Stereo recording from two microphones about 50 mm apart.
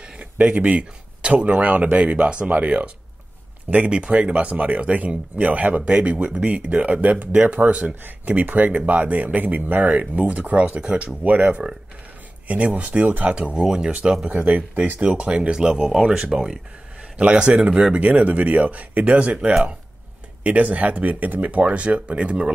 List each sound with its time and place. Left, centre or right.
0.0 s speech: right
7.9 s speech: right
8.4 s speech: right
14.3 s speech: right